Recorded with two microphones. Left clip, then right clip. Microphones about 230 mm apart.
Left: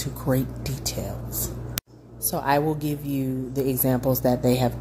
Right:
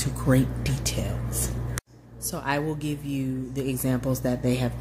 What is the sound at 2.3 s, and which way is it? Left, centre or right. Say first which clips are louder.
Speech: left 5 dB; centre.